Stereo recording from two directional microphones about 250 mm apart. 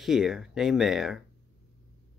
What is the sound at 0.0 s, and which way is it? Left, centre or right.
Speech, centre.